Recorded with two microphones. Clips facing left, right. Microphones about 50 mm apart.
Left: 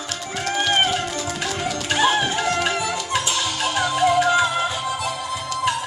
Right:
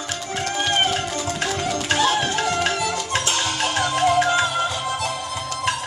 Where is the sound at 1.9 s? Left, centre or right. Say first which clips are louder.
Left 1 dB; centre.